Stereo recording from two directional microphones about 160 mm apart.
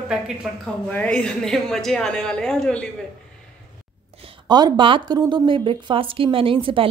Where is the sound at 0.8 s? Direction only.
10° left (ahead or behind).